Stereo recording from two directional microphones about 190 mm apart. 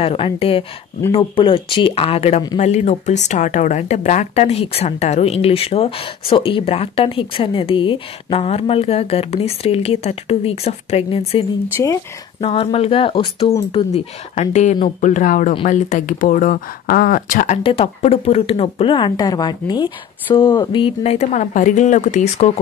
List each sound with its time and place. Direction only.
0.0 s speech: 30° left (ahead or behind)
11.7 s speech: 15° left (ahead or behind)
12.4 s speech: 30° left (ahead or behind)
17.6 s speech: 30° left (ahead or behind)